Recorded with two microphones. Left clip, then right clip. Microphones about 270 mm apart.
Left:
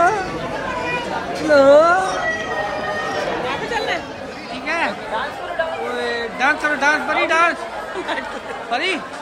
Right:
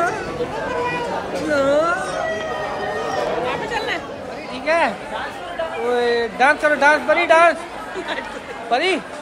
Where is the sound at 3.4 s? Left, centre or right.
Centre.